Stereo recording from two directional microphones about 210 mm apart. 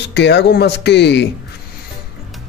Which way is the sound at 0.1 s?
55° left (ahead or behind).